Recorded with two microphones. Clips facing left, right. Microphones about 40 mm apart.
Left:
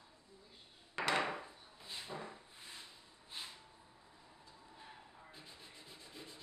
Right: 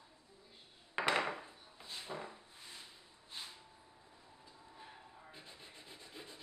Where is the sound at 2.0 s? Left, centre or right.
Centre.